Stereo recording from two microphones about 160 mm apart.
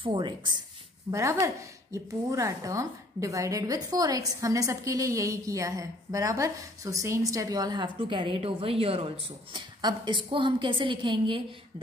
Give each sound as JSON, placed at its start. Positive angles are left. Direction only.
{"t": 0.0, "sound": "a woman's voice", "side_deg": -30}
{"t": 1.1, "sound": "speech", "side_deg": -20}